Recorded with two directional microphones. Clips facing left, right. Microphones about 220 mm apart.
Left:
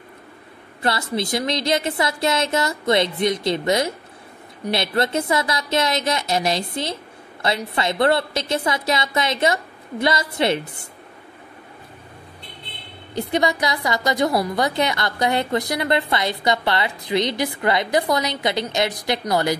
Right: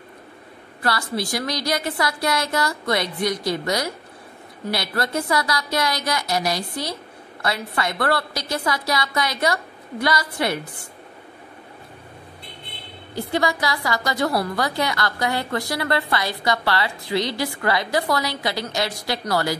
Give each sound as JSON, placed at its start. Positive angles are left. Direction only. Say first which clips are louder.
{"t": 0.8, "sound": "a woman's voice", "louder": "left 2 dB", "side_deg": 20}
{"t": 13.1, "sound": "a woman's voice", "louder": "left 2 dB", "side_deg": 20}